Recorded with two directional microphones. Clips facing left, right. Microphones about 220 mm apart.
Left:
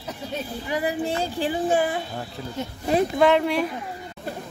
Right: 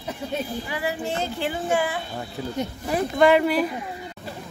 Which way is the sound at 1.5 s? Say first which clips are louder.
Left 3 dB; 30° left (ahead or behind).